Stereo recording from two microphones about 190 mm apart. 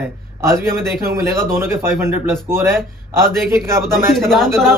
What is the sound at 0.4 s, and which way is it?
Speech, 15° right (ahead or behind).